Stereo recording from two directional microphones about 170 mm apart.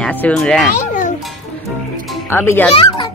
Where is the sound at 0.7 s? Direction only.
50° left (ahead or behind).